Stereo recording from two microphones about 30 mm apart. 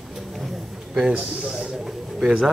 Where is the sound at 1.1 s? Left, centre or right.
Right.